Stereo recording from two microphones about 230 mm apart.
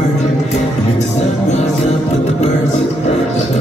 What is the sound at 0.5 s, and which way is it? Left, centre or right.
Music, left.